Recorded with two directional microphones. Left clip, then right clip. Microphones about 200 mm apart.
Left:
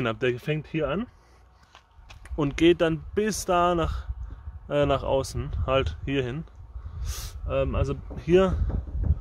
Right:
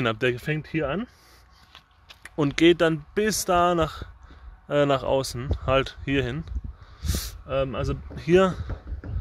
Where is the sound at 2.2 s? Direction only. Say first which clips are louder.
Right 2 dB; 20° right (ahead or behind).